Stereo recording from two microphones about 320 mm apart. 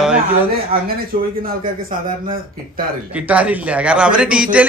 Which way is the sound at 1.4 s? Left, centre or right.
Right.